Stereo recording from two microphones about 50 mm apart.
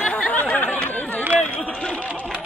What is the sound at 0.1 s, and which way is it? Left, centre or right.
Chatter, left.